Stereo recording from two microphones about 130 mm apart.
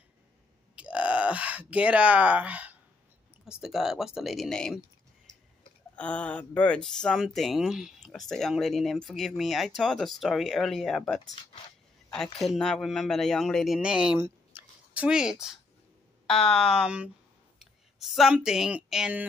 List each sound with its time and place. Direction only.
0.7 s speech: 10° right (ahead or behind)
5.9 s speech: 10° left (ahead or behind)
13.7 s speech: 5° right (ahead or behind)
14.1 s squish: 20° right (ahead or behind)
15.0 s speech: 5° right (ahead or behind)